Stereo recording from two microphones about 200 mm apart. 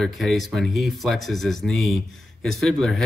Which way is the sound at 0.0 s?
Centre (ahead or behind).